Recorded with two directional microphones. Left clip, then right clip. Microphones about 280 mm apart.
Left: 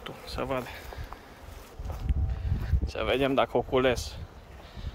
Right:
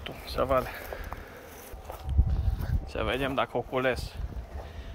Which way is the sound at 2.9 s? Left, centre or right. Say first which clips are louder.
Left 3 dB; centre.